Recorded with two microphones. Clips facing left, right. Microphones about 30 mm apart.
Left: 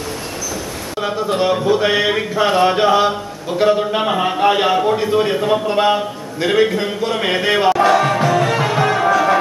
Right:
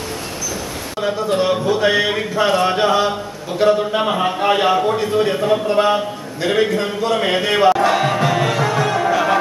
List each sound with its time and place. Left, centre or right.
1.0 s speech: centre
7.9 s music: centre
8.5 s music: centre